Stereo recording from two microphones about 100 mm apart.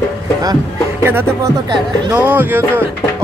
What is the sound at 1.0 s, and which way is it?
Speech, 20° right (ahead or behind).